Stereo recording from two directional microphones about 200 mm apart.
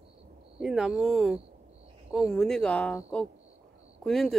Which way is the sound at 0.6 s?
5° right (ahead or behind).